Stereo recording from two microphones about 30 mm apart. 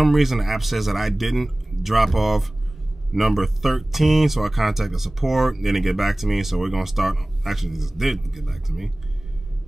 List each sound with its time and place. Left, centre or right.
0.0 s speech: centre